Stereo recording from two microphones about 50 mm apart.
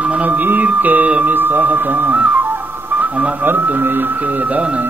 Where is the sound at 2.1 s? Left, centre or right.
Right.